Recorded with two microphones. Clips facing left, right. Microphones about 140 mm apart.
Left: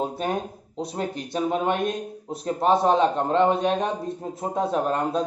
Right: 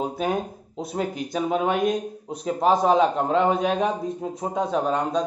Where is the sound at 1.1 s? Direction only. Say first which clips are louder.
Even; centre (ahead or behind).